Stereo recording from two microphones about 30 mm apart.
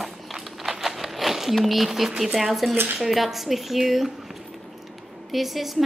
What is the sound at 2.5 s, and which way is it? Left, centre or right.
Speech, centre.